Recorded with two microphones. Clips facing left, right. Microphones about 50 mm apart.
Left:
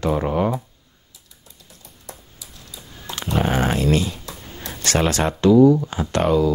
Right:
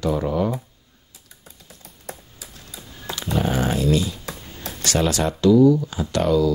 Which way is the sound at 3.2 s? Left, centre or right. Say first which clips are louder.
Left 2 dB; left.